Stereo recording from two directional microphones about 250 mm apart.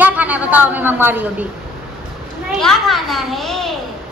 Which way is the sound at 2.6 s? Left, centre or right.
Centre.